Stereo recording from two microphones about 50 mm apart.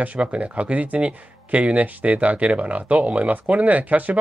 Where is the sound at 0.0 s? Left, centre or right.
Right.